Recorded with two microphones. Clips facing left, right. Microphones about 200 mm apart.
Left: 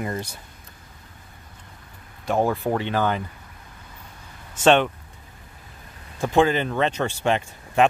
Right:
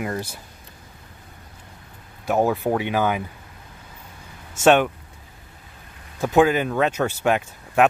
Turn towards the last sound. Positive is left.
turn(degrees=-5)  # may be behind; listen again after turning